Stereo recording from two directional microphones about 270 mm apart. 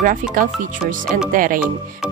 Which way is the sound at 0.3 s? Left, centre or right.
Right.